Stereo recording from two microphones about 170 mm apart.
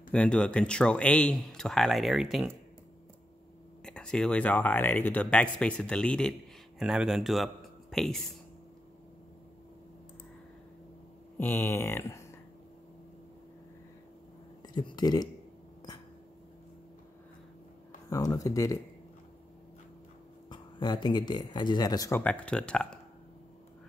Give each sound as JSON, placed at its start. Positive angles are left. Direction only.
{"t": 0.1, "sound": "speech", "side_deg": 5}
{"t": 3.8, "sound": "a man's voice", "side_deg": 5}
{"t": 11.3, "sound": "speech", "side_deg": 10}
{"t": 14.7, "sound": "speech", "side_deg": 25}
{"t": 18.1, "sound": "speech", "side_deg": 20}
{"t": 20.4, "sound": "speech", "side_deg": 25}
{"t": 22.2, "sound": "speech", "side_deg": 5}